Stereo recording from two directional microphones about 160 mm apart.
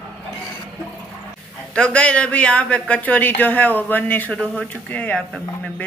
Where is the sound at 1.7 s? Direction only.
5° left (ahead or behind).